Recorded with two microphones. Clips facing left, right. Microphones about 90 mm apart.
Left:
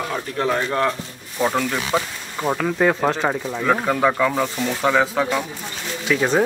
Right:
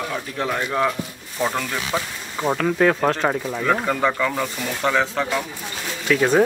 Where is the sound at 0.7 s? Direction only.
5° right (ahead or behind).